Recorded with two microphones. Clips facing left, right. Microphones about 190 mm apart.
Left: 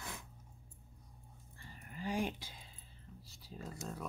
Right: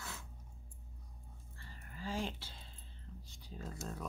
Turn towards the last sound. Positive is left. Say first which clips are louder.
# even
turn(degrees=0)  # may be behind; listen again after turning